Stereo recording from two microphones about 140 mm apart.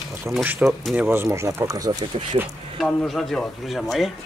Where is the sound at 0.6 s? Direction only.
5° right (ahead or behind); by 2.1 s 25° right (ahead or behind).